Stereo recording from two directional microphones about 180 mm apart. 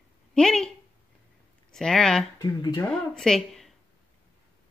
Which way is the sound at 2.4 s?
20° left (ahead or behind).